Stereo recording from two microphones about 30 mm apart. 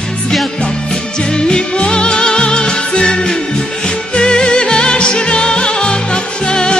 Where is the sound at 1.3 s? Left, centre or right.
Left.